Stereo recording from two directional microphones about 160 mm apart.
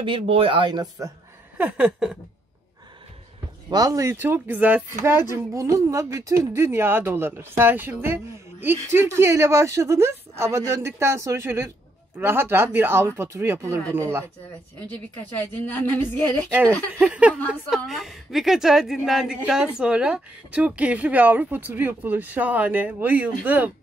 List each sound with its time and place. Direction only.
0.0 s speech: 35° right (ahead or behind)
1.6 s speech: 10° right (ahead or behind)
3.7 s speech: 20° right (ahead or behind)
14.9 s a woman's voice: 10° left (ahead or behind)
17.0 s a woman's voice: 5° right (ahead or behind)